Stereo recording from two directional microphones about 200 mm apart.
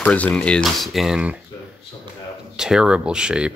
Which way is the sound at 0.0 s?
5° left (ahead or behind).